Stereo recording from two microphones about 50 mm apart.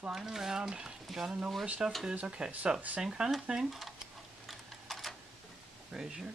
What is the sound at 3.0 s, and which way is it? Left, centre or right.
Speech, centre.